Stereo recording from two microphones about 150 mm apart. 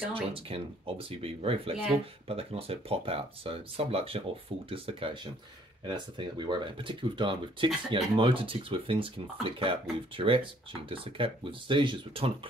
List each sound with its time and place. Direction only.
0.1 s speech: 40° right (ahead or behind)